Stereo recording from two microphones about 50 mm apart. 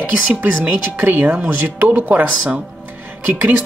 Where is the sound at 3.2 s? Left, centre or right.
Right.